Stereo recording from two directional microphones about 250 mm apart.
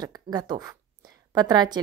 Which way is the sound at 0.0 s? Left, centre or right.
Centre.